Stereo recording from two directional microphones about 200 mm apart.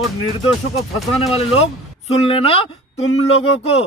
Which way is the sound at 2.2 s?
30° left (ahead or behind).